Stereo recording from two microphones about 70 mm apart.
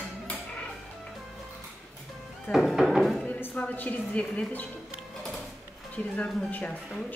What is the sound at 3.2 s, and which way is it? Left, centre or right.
A woman's voice, left.